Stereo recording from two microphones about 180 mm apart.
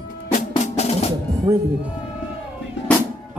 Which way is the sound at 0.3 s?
35° left (ahead or behind).